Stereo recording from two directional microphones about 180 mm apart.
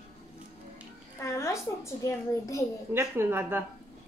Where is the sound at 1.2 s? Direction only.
15° left (ahead or behind).